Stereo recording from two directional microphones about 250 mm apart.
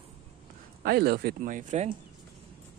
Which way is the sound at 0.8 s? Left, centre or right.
Right.